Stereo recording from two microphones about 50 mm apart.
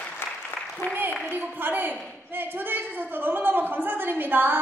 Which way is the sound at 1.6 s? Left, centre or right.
Right.